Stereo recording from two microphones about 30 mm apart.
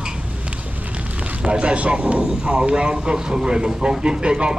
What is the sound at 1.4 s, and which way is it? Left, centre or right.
Speech, right.